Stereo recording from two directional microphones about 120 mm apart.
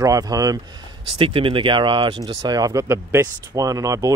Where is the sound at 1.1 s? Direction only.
50° right (ahead or behind).